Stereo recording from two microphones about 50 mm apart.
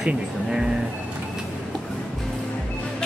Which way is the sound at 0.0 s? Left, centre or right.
Centre.